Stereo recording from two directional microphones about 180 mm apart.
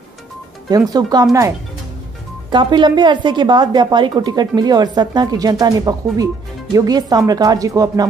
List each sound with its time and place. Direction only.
0.7 s speech: 20° right (ahead or behind)
2.5 s speech: 25° right (ahead or behind)